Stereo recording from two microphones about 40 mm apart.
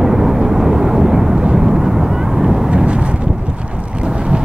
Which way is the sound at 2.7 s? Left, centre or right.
Right.